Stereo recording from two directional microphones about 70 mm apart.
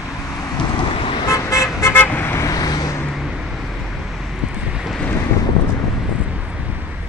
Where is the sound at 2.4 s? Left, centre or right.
Left.